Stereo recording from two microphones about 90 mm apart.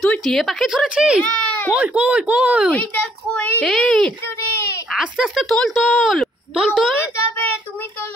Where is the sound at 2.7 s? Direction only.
15° left (ahead or behind).